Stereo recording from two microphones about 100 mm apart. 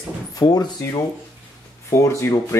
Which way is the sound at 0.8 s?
30° left (ahead or behind).